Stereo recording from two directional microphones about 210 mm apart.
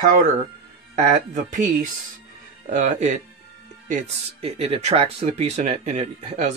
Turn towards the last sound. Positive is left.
turn(degrees=-30)  # may be behind; listen again after turning